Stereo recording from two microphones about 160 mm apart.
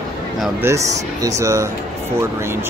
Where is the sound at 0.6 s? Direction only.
15° right (ahead or behind).